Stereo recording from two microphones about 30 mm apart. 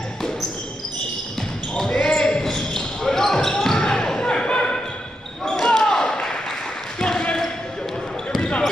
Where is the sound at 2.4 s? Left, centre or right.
Centre.